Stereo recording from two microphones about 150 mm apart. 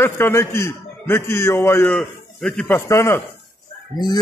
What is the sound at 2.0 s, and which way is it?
Speech, 5° left (ahead or behind).